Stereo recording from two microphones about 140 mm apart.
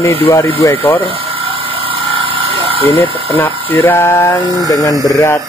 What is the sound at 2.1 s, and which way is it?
Vehicle, 40° right (ahead or behind).